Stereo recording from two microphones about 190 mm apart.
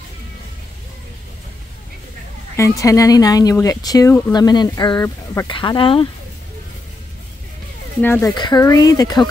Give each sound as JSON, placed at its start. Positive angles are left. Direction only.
{"t": 2.5, "sound": "speech", "side_deg": 15}
{"t": 5.5, "sound": "speech", "side_deg": 25}
{"t": 8.0, "sound": "speech", "side_deg": 10}
{"t": 8.4, "sound": "speech", "side_deg": 20}